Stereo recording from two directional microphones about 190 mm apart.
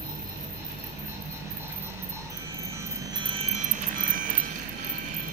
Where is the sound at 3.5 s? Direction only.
45° right (ahead or behind).